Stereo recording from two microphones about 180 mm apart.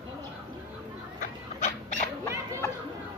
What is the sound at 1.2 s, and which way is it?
Dog, 45° left (ahead or behind).